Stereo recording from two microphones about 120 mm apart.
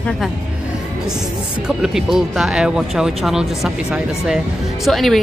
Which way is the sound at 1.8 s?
5° right (ahead or behind).